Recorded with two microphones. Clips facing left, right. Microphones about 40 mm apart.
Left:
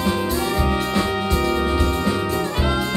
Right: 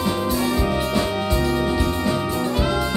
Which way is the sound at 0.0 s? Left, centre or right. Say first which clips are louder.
Even; centre.